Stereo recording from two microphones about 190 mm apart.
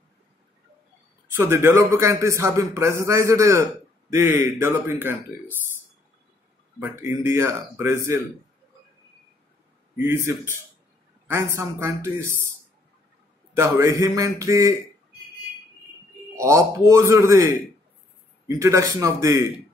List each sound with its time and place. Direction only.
1.3 s speech: 15° right (ahead or behind)
6.8 s speech: 15° right (ahead or behind)
9.9 s speech: 15° right (ahead or behind)
13.6 s speech: 15° right (ahead or behind)
16.3 s speech: 15° right (ahead or behind)
18.6 s speech: 15° right (ahead or behind)